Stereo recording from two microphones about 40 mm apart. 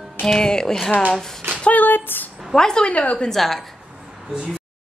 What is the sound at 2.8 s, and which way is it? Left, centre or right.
Female singing, left.